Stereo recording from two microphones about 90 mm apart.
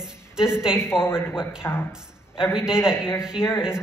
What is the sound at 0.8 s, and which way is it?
Speech, 30° left (ahead or behind).